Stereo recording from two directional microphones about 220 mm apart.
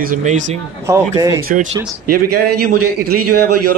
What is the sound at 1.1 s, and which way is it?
Speech, 15° right (ahead or behind).